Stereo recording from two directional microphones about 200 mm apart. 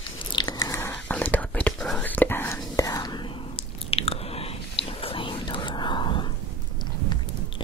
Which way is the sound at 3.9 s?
30° left (ahead or behind).